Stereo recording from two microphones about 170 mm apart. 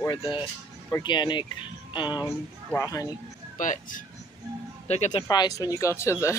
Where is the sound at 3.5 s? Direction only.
50° left (ahead or behind).